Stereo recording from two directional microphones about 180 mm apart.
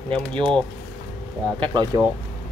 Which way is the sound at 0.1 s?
5° left (ahead or behind).